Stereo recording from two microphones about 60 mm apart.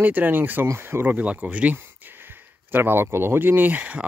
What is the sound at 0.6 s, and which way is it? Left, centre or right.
Speech, right.